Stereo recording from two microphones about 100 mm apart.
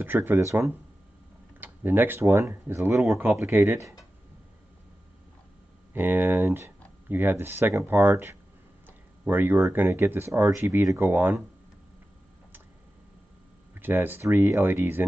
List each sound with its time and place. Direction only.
0.0 s speech: 20° right (ahead or behind)
5.9 s speech: 20° right (ahead or behind)
13.7 s speech: 20° right (ahead or behind)